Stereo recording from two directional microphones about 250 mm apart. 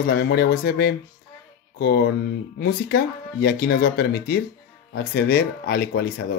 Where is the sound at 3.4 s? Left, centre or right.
Left.